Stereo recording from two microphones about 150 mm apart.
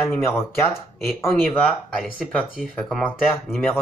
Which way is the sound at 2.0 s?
10° left (ahead or behind).